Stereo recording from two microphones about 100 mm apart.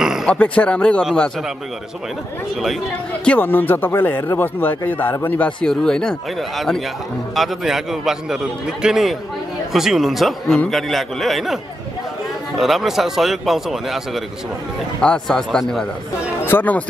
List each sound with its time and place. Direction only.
0.0 s a sound: 5° right (ahead or behind)
0.3 s speech: 10° left (ahead or behind)
3.3 s a man's voice: 20° left (ahead or behind); by 15.9 s 5° left (ahead or behind)
16.4 s speech: 20° left (ahead or behind)